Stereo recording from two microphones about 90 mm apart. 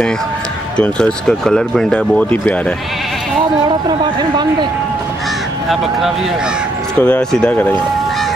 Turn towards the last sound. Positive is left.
turn(degrees=15)  # may be behind; listen again after turning